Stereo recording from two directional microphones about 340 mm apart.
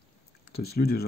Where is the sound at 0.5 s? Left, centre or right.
Left.